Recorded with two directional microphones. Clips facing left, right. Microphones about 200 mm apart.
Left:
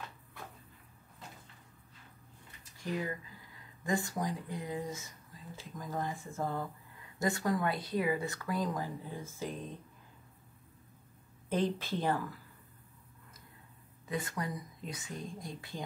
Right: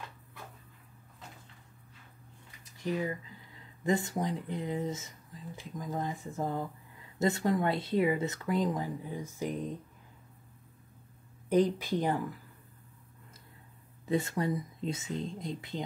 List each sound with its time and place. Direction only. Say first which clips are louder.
2.8 s speech: right 4 dB; 20° right (ahead or behind)
11.4 s a woman's voice: right 6 dB; 15° right (ahead or behind)
14.0 s speech: right 7 dB; 25° right (ahead or behind)